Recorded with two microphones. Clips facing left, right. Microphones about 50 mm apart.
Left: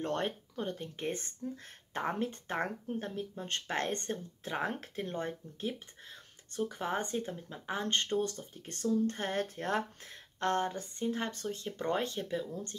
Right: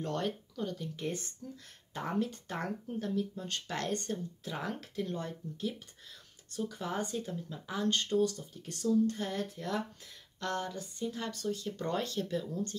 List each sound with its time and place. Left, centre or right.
0.0 s speech: left